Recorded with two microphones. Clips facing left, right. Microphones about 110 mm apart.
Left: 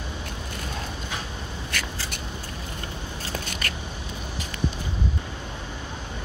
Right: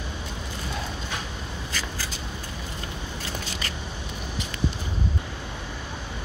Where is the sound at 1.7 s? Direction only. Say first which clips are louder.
Left 2 dB; 65° left (ahead or behind).